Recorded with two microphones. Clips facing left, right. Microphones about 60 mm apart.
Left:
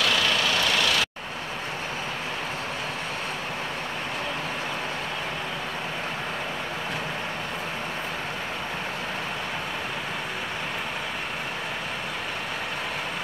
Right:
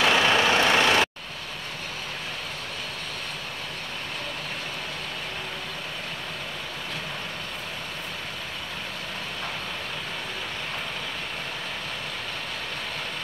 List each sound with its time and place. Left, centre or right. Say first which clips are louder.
0.0 s vehicle: right 3 dB; right